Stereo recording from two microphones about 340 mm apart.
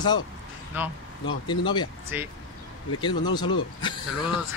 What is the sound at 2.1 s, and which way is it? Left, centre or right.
Speech, centre.